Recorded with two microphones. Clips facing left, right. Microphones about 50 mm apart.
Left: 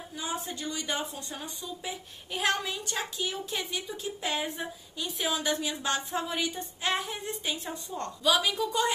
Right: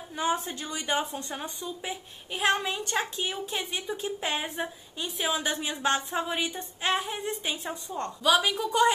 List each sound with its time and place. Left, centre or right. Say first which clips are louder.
0.1 s a woman's voice: right 7 dB; right
0.7 s speech: right 4 dB; right
1.1 s a woman's voice: right 4 dB; right